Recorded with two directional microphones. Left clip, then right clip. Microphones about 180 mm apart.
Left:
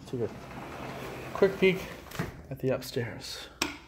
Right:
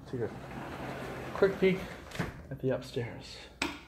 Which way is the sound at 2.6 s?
35° left (ahead or behind).